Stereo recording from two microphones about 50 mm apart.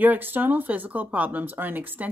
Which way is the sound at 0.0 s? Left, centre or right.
Right.